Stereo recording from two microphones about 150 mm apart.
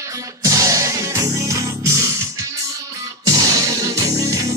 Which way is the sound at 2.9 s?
25° right (ahead or behind).